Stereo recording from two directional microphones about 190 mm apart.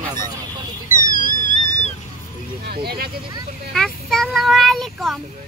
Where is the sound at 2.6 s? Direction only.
55° right (ahead or behind).